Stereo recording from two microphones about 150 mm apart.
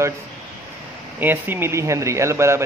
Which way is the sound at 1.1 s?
15° right (ahead or behind).